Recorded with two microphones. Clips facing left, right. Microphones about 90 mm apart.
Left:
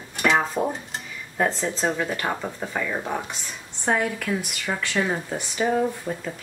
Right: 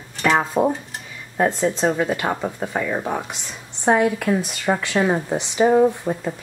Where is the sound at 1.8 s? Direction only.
10° right (ahead or behind).